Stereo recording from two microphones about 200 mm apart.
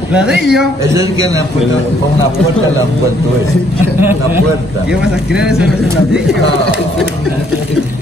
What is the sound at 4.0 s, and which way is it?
A man's voice, 10° right (ahead or behind).